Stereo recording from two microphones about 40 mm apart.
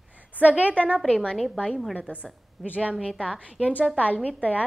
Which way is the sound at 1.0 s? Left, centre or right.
Left.